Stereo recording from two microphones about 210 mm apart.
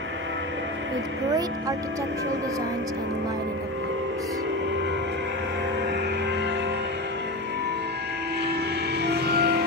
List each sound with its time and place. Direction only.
9.0 s music: 50° right (ahead or behind)